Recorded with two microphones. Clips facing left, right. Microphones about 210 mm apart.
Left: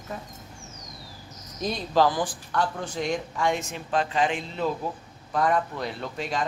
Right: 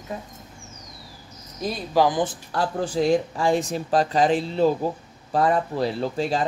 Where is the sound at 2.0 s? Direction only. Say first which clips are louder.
Right 3 dB; 20° right (ahead or behind).